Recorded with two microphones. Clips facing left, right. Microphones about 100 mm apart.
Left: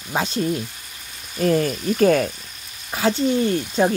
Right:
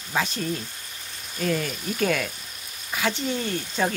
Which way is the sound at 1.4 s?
45° left (ahead or behind).